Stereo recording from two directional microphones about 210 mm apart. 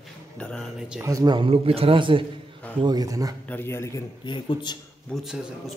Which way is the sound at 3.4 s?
10° left (ahead or behind).